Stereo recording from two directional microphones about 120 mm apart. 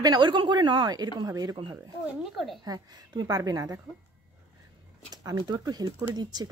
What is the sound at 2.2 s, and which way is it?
Speech, centre (ahead or behind).